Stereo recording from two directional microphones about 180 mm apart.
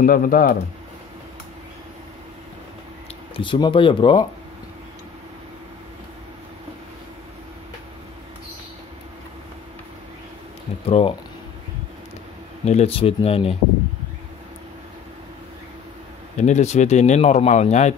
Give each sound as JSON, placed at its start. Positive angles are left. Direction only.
{"t": 0.0, "sound": "speech", "side_deg": 50}
{"t": 3.3, "sound": "speech", "side_deg": 25}
{"t": 10.9, "sound": "speech", "side_deg": 30}
{"t": 12.6, "sound": "speech", "side_deg": 35}
{"t": 16.3, "sound": "speech", "side_deg": 40}